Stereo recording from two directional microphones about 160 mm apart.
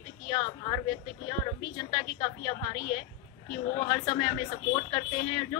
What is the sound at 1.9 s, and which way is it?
Speech, 30° left (ahead or behind).